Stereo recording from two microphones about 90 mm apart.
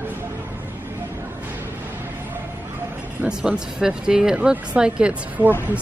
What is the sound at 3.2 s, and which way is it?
Speech, 10° right (ahead or behind).